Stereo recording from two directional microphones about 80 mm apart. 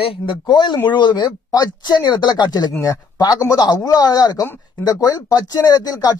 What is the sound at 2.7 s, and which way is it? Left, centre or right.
Speech, left.